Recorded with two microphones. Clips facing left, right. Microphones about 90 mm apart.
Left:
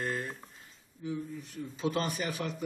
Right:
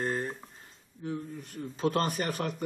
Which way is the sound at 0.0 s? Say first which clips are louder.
Right 3 dB; 35° right (ahead or behind).